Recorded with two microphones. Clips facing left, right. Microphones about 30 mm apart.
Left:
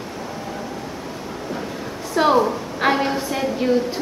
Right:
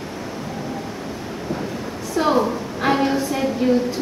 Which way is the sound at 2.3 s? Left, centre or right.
Centre.